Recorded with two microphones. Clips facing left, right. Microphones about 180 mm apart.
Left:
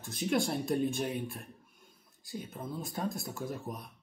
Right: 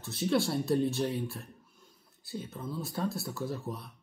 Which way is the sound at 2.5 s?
15° left (ahead or behind).